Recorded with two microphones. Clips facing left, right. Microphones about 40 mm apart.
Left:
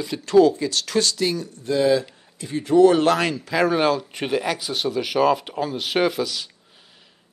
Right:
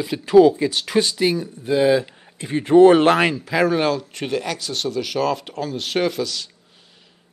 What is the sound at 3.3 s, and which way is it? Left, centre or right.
Speech, centre.